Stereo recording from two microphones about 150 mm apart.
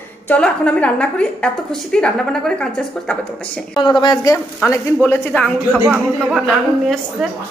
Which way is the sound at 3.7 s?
30° left (ahead or behind).